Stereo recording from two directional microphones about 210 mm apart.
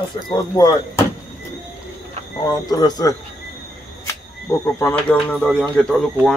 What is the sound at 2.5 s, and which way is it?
Speech, 20° left (ahead or behind).